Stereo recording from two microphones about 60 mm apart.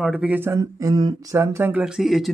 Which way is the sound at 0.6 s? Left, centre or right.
Right.